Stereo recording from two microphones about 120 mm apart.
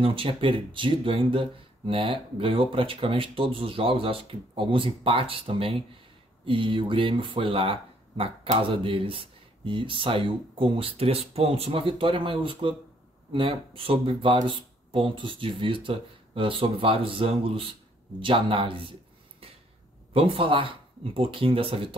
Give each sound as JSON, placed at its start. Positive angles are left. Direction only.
{"t": 0.0, "sound": "speech", "side_deg": -50}
{"t": 20.1, "sound": "speech", "side_deg": -50}